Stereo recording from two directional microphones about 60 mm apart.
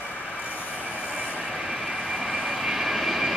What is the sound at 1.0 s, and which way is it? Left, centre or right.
Train, centre.